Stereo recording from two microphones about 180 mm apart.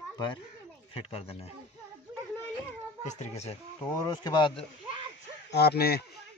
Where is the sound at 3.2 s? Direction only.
35° left (ahead or behind).